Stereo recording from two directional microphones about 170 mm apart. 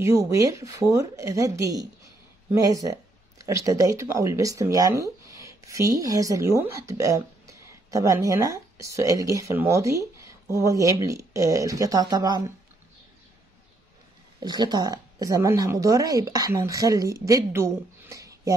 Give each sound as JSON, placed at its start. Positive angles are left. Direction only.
{"t": 0.0, "sound": "speech", "side_deg": -20}
{"t": 14.4, "sound": "speech", "side_deg": -25}